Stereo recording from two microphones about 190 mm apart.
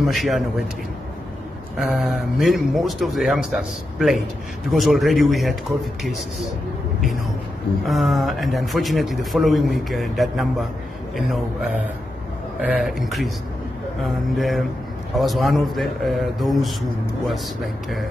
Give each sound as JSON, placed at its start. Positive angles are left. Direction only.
{"t": 0.0, "sound": "a man's voice", "side_deg": 0}
{"t": 1.8, "sound": "a man's voice", "side_deg": 0}
{"t": 7.8, "sound": "a man's voice", "side_deg": 0}